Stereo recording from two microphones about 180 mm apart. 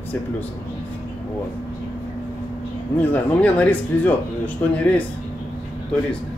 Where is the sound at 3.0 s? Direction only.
10° left (ahead or behind).